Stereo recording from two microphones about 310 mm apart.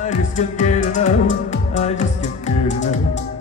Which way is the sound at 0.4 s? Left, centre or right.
Left.